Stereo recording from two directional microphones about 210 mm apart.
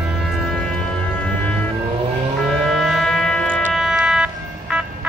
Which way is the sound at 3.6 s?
5° right (ahead or behind).